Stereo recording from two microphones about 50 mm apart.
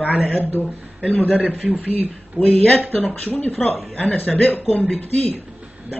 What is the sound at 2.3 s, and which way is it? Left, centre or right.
Speech, left.